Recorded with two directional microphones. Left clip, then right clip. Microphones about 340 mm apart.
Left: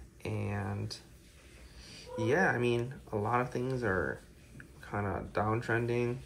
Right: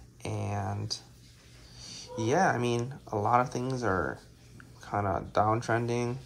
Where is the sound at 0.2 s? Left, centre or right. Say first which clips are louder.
Right 3 dB; centre.